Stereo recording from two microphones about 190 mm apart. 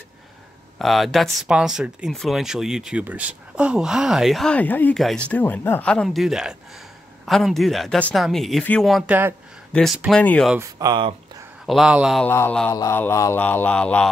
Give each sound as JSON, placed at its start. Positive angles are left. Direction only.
{"t": 0.7, "sound": "speech", "side_deg": 0}
{"t": 9.7, "sound": "speech", "side_deg": 5}
{"t": 10.8, "sound": "speech", "side_deg": -25}
{"t": 11.6, "sound": "speech", "side_deg": 0}
{"t": 12.3, "sound": "speech", "side_deg": 10}